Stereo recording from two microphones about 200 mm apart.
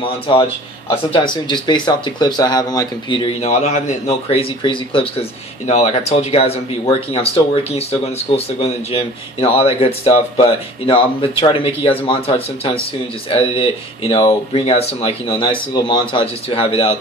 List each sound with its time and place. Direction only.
0.0 s speech: 25° left (ahead or behind)
3.3 s a man's voice: 35° left (ahead or behind)